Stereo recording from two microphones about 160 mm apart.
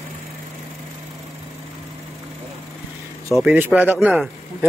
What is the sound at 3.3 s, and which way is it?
Speech, 10° right (ahead or behind).